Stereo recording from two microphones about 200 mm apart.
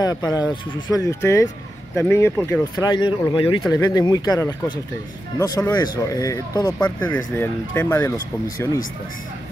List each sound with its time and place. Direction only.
0.0 s speech: 20° left (ahead or behind)